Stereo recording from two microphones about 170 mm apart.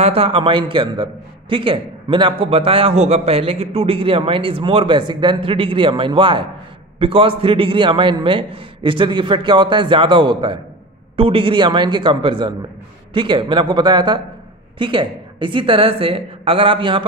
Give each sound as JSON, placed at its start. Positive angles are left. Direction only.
{"t": 0.0, "sound": "a man's voice", "side_deg": -35}